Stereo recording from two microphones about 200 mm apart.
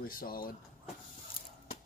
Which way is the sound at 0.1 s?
45° left (ahead or behind).